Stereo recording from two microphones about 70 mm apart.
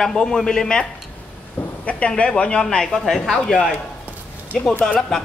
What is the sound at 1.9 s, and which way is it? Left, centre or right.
A man's voice, centre.